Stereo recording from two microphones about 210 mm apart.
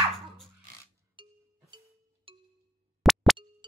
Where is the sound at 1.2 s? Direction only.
25° right (ahead or behind).